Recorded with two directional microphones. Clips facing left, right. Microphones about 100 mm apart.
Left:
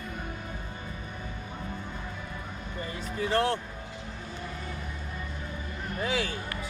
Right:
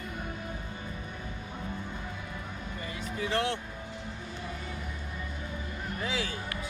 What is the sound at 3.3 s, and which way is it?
Speech, 40° left (ahead or behind).